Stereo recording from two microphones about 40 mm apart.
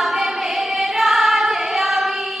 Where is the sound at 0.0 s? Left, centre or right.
Centre.